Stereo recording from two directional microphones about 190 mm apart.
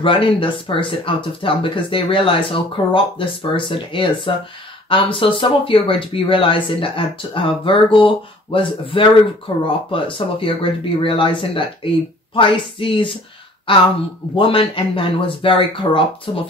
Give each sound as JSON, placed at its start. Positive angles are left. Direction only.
{"t": 0.0, "sound": "speech", "side_deg": 25}